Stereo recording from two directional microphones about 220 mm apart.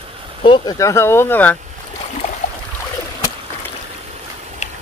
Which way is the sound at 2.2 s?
30° left (ahead or behind).